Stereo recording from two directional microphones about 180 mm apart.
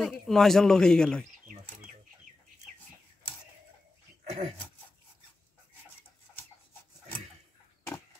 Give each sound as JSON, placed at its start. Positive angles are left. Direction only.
{"t": 0.0, "sound": "speech", "side_deg": 0}
{"t": 4.3, "sound": "speech", "side_deg": -35}